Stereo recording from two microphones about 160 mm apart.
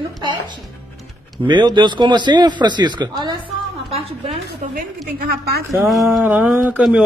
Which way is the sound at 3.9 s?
40° right (ahead or behind).